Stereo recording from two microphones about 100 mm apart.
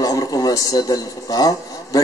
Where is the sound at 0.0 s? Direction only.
40° left (ahead or behind).